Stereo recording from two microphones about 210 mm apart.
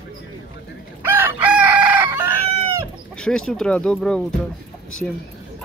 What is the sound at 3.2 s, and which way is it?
Speech, 5° left (ahead or behind).